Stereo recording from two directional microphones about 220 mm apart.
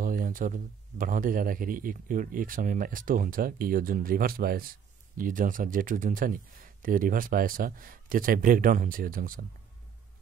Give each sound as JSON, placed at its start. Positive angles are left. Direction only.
{"t": 0.0, "sound": "a man's voice", "side_deg": -40}